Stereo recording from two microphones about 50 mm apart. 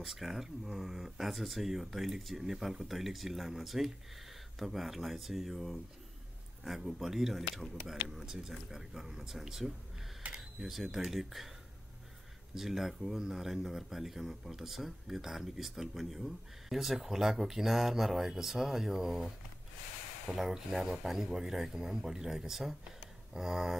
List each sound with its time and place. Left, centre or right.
0.0 s a man's voice: centre
10.2 s camera: right
10.6 s speech: centre
12.5 s a man's voice: centre